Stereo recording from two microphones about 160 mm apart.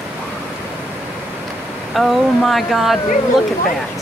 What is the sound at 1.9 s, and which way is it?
Speech, centre (ahead or behind).